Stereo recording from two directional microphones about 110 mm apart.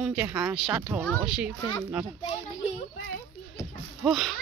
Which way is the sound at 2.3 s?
75° left (ahead or behind).